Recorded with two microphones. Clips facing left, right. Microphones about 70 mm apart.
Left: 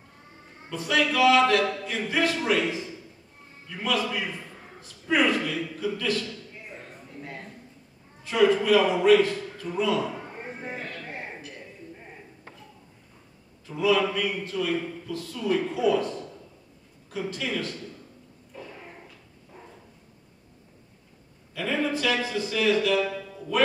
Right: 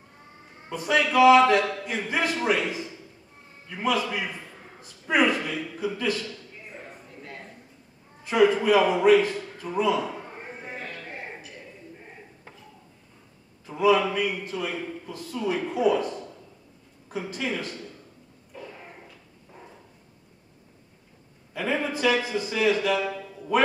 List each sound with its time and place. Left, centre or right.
0.7 s a man's voice: centre
3.7 s a man's voice: centre
8.2 s a man's voice: centre
10.6 s a sound: centre
13.7 s a man's voice: centre
17.1 s a man's voice: centre
21.5 s a man's voice: centre